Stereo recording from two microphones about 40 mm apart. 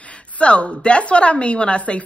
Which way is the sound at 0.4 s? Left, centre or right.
Left.